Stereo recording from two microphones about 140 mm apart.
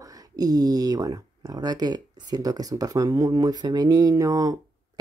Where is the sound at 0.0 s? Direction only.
25° right (ahead or behind).